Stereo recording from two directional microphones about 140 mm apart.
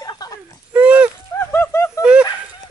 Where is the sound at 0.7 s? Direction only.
10° right (ahead or behind).